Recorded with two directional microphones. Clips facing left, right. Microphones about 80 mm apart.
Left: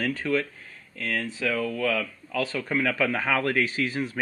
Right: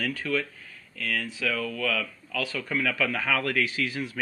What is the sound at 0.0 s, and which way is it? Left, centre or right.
Speech, left.